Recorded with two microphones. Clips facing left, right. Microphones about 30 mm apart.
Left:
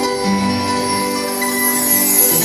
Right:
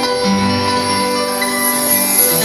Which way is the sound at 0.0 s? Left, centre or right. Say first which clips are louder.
Right 2 dB; right.